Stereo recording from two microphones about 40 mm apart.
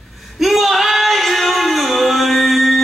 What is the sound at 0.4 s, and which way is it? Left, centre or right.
Singing, centre.